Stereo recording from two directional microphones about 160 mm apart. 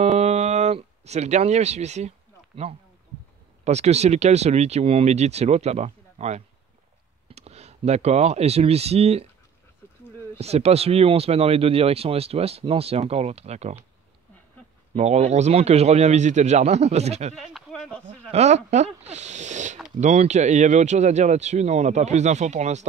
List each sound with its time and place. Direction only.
0.0 s a sound: 45° right (ahead or behind)
3.6 s speech: 45° right (ahead or behind)
10.3 s speech: 40° right (ahead or behind)
15.0 s speech: 45° right (ahead or behind)
17.4 s speech: centre (ahead or behind)
18.0 s speech: 40° right (ahead or behind)